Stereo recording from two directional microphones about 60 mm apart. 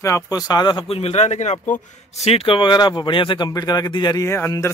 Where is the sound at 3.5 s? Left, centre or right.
Left.